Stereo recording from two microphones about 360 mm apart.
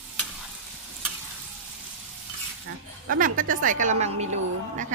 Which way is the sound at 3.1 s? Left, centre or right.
Right.